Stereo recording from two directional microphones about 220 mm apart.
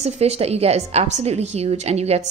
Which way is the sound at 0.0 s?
30° right (ahead or behind).